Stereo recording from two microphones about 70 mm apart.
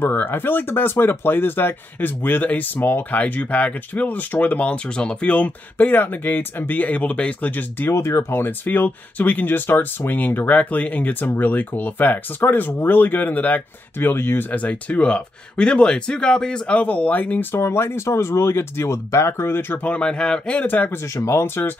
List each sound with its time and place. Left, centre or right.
0.0 s speech: left
7.9 s speech: left
17.6 s speech: left
19.9 s speech: centre
20.6 s speech: left
21.2 s speech: left